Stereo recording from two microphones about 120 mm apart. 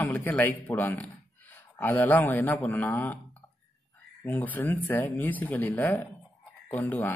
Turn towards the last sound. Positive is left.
turn(degrees=15)  # may be behind; listen again after turning